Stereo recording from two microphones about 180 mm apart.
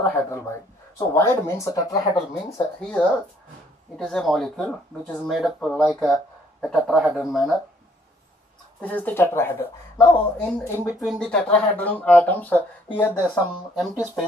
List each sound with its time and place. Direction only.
0.1 s speech: 15° left (ahead or behind)
4.0 s speech: centre (ahead or behind)
8.8 s speech: 10° left (ahead or behind)
10.9 s speech: centre (ahead or behind)